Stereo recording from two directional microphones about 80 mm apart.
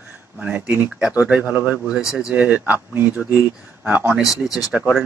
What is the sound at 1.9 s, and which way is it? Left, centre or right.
Speech, centre.